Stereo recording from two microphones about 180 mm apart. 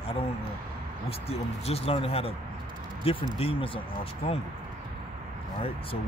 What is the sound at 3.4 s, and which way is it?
Speech, 30° left (ahead or behind).